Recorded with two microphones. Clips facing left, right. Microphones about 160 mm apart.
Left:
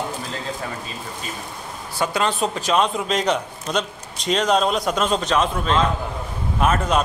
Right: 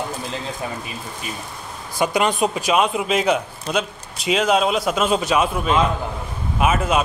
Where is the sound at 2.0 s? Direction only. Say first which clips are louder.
Right 3 dB; 15° right (ahead or behind).